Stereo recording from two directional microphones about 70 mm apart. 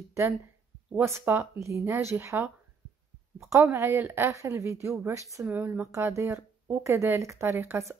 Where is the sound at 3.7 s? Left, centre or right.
Right.